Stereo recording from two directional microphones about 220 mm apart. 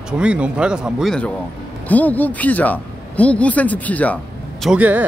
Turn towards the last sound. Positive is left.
turn(degrees=-5)  # may be behind; listen again after turning